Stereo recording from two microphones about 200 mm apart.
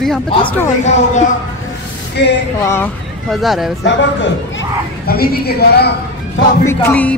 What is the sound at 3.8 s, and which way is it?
A woman's voice, 65° left (ahead or behind).